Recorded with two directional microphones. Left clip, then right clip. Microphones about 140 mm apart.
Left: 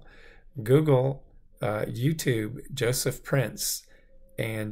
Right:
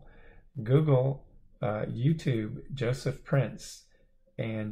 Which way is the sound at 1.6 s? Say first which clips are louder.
Left 3 dB; 20° left (ahead or behind).